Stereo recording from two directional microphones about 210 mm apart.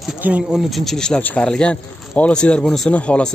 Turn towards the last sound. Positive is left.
turn(degrees=5)  # may be behind; listen again after turning